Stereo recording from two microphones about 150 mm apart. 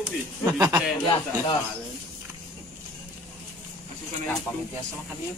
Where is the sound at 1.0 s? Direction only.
30° left (ahead or behind).